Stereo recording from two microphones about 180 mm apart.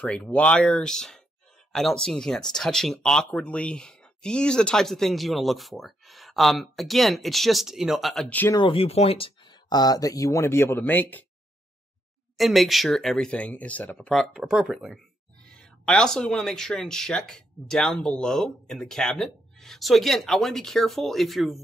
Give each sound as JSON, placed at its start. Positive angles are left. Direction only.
{"t": 0.0, "sound": "speech", "side_deg": 5}
{"t": 8.5, "sound": "speech", "side_deg": 30}
{"t": 12.4, "sound": "speech", "side_deg": 0}